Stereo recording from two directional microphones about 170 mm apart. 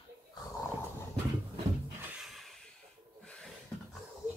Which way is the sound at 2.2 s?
Centre (ahead or behind).